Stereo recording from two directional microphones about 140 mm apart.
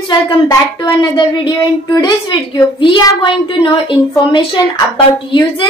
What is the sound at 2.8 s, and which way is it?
A woman's voice, 35° left (ahead or behind).